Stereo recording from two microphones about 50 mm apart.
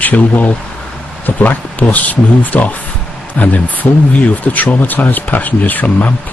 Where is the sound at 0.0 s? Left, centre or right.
Left.